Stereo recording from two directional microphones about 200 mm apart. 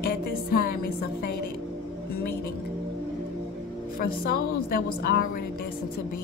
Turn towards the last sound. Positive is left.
turn(degrees=45)  # may be behind; listen again after turning